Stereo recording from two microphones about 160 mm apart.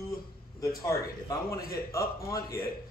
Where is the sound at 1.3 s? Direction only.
20° left (ahead or behind).